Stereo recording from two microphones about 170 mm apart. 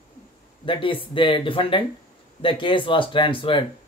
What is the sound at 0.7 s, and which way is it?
Speech, 30° left (ahead or behind).